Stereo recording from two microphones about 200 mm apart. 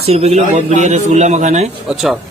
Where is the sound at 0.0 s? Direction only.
30° right (ahead or behind).